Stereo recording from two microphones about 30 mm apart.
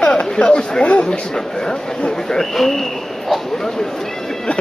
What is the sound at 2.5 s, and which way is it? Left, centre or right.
Speech, centre.